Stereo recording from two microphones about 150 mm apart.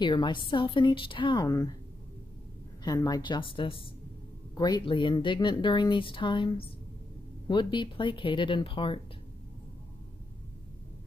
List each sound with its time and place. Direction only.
0.0 s speech: 30° left (ahead or behind)
2.8 s speech: 25° left (ahead or behind)